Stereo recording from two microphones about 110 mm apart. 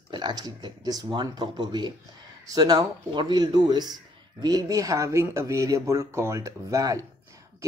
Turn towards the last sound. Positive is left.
turn(degrees=-35)  # may be behind; listen again after turning